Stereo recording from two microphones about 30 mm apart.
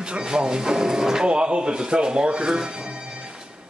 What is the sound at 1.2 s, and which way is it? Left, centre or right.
Speech, right.